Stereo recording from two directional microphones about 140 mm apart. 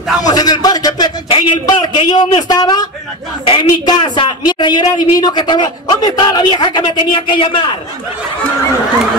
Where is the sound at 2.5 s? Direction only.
30° left (ahead or behind).